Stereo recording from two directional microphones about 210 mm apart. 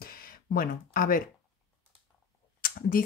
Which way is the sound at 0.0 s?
45° left (ahead or behind).